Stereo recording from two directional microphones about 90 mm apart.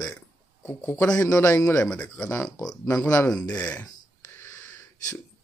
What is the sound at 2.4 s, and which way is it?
Speech, 45° left (ahead or behind).